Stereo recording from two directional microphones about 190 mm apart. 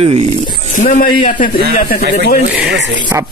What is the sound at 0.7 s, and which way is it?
Speech, 40° left (ahead or behind).